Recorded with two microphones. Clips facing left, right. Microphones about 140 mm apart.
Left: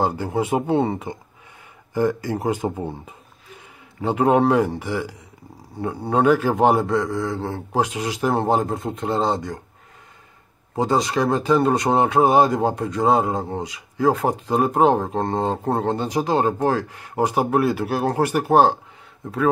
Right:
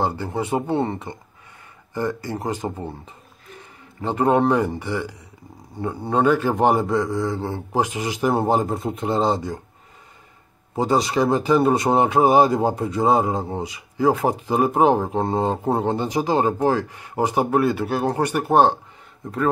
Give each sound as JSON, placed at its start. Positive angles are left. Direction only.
{"t": 0.0, "sound": "speech", "side_deg": 10}
{"t": 10.7, "sound": "speech", "side_deg": 0}